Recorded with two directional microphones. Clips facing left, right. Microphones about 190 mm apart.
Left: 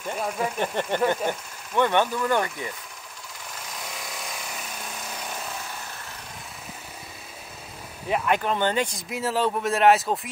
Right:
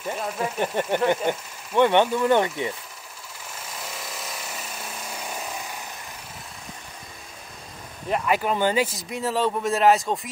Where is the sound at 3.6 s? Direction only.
Centre (ahead or behind).